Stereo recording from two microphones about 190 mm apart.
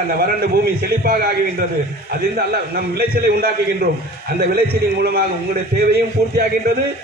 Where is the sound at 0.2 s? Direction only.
50° right (ahead or behind).